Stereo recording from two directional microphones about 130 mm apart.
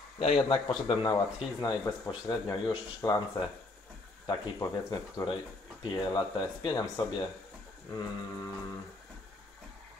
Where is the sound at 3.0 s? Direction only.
20° left (ahead or behind).